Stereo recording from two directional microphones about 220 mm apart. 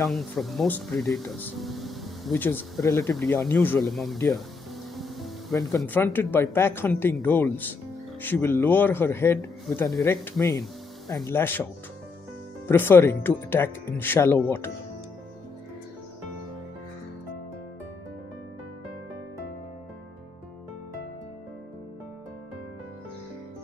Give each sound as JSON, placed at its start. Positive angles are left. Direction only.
{"t": 0.0, "sound": "speech", "side_deg": 0}
{"t": 4.9, "sound": "music", "side_deg": 0}
{"t": 5.5, "sound": "speech", "side_deg": 15}
{"t": 5.8, "sound": "speech", "side_deg": 5}
{"t": 9.7, "sound": "speech", "side_deg": 0}
{"t": 12.6, "sound": "speech", "side_deg": 10}